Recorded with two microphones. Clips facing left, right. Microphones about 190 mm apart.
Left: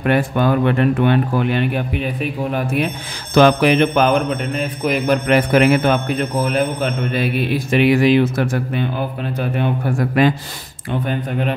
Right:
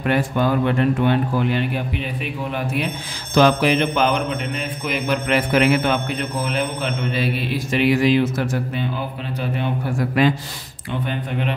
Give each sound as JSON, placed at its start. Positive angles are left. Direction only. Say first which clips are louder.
{"t": 0.0, "sound": "a man's voice", "louder": "left 3 dB", "side_deg": 60}
{"t": 2.5, "sound": "mantra", "louder": "left 3 dB", "side_deg": 45}
{"t": 3.3, "sound": "mantra", "louder": "left 4 dB", "side_deg": 60}